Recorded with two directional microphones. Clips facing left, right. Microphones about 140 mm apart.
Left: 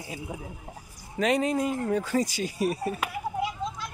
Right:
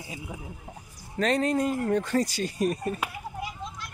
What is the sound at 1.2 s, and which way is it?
Speech, 10° left (ahead or behind).